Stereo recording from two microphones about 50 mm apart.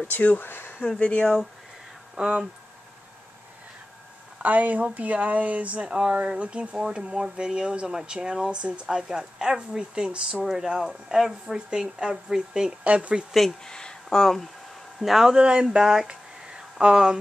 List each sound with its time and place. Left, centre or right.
0.1 s speech: left
0.8 s speech: left
2.1 s speech: centre
4.4 s speech: right; by 12.7 s centre
12.8 s speech: right
13.3 s a man's voice: centre
13.7 s speech: centre
15.0 s a man's voice: centre
15.3 s speech: centre